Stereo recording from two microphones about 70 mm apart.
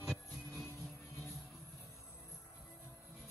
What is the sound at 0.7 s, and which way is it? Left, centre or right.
Music, left.